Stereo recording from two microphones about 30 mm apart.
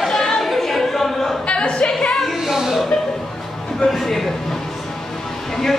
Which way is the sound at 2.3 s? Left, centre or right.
Centre.